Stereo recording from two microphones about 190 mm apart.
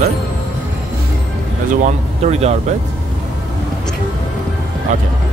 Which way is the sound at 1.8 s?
35° right (ahead or behind).